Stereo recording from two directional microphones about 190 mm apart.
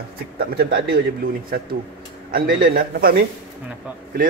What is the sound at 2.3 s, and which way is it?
Speech, 50° right (ahead or behind).